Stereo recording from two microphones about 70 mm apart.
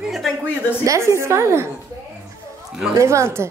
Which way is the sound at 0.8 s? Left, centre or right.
Right.